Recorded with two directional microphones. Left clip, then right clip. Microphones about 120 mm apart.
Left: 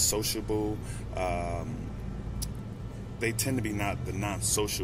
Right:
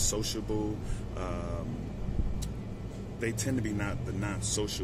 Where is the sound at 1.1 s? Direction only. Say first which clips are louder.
Left 7 dB; 20° right (ahead or behind).